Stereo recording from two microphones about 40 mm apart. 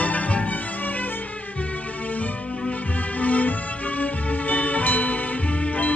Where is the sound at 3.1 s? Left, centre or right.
Left.